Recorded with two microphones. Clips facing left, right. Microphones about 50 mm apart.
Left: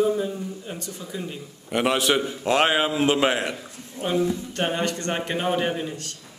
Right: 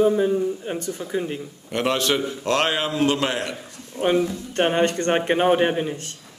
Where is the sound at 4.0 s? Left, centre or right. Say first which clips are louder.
Right 3 dB; right.